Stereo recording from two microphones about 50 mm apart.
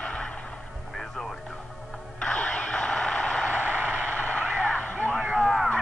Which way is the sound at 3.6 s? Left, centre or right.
Right.